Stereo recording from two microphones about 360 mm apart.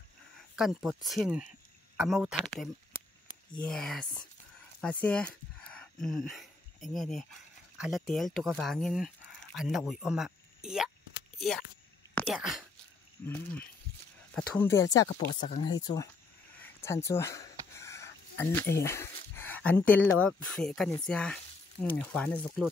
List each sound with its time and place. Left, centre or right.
0.6 s speech: centre
16.5 s speech: centre